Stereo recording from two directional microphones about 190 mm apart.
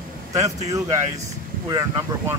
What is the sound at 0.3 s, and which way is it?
Speech, 20° right (ahead or behind).